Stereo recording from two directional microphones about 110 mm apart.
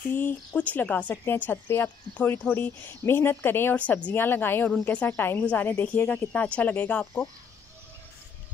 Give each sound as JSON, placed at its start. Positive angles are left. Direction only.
{"t": 0.1, "sound": "speech", "side_deg": 20}